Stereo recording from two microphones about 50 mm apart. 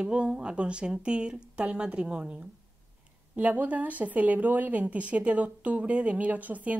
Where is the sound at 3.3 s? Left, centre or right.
Right.